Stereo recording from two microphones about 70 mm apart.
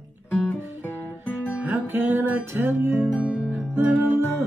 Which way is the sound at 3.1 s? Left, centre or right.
Centre.